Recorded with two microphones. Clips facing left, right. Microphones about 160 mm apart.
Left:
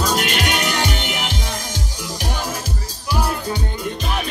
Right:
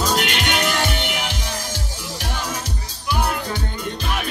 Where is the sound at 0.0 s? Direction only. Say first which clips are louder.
Even; centre (ahead or behind).